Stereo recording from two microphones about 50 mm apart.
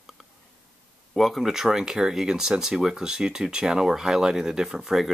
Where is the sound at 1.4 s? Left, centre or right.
Centre.